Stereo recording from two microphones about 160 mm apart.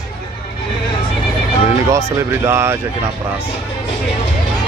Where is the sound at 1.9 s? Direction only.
15° right (ahead or behind).